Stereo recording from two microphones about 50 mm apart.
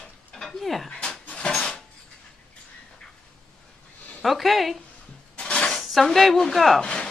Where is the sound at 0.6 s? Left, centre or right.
Centre.